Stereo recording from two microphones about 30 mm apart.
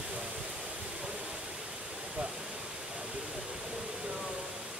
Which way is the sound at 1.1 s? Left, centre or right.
Right.